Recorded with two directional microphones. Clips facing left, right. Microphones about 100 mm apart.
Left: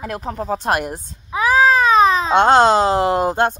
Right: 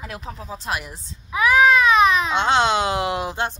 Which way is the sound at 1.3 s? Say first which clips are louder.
Left 1 dB; 35° left (ahead or behind).